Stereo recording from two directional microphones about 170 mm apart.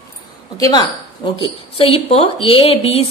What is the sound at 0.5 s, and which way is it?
A woman's voice, 20° left (ahead or behind).